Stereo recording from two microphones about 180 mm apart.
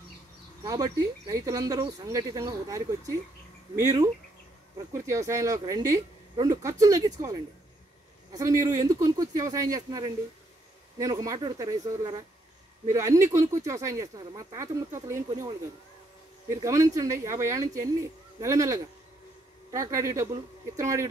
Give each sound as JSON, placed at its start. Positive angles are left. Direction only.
{"t": 0.7, "sound": "speech", "side_deg": -20}
{"t": 16.4, "sound": "speech", "side_deg": -15}